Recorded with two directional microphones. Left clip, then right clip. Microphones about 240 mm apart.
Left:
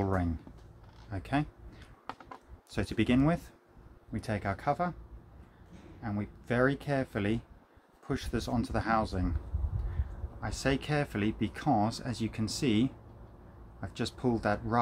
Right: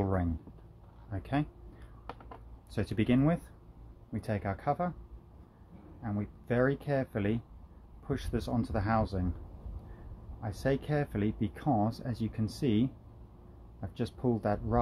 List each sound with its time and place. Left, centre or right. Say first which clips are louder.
0.0 s a sound: left 1 dB; centre
1.1 s speech: left 1 dB; centre
2.7 s speech: left 1 dB; centre
6.0 s speech: even; centre
10.4 s speech: left 1 dB; centre